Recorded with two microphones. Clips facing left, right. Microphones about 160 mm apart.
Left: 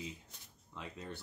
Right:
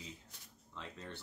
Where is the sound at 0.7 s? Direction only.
10° left (ahead or behind).